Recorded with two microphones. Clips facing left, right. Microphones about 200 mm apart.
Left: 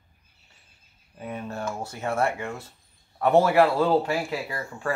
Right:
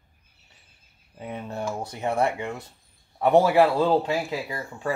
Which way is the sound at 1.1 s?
20° right (ahead or behind).